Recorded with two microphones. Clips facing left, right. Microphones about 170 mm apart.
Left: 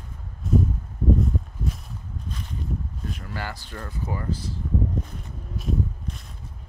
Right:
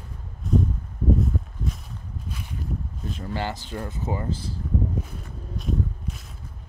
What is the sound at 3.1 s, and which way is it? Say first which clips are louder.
Speech: right 6 dB; 25° right (ahead or behind).